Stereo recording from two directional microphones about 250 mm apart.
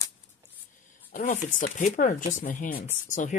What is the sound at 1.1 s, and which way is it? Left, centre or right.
Speech, left.